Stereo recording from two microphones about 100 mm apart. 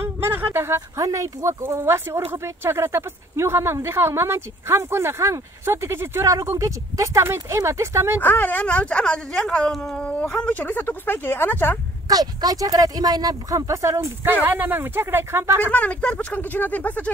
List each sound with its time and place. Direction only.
0.2 s speech: 25° right (ahead or behind)
8.2 s speech: 20° left (ahead or behind)
12.1 s speech: 40° right (ahead or behind)
14.2 s speech: 20° right (ahead or behind)
15.7 s speech: 15° left (ahead or behind)